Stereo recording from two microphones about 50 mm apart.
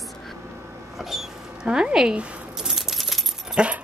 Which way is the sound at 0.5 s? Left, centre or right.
Right.